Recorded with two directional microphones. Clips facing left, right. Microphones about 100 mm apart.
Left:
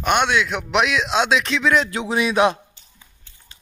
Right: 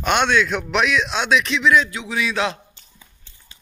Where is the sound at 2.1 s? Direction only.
20° left (ahead or behind).